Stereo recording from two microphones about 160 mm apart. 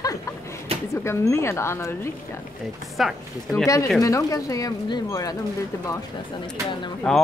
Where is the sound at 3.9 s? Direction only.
20° left (ahead or behind).